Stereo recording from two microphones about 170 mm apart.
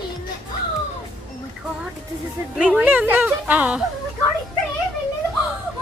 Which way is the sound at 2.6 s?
5° right (ahead or behind).